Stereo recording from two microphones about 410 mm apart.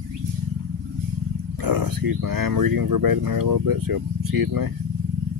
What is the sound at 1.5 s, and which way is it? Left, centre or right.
Speech, right.